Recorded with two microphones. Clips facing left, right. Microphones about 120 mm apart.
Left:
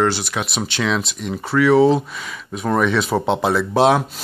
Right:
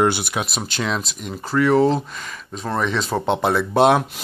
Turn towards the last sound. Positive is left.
turn(degrees=0)  # may be behind; listen again after turning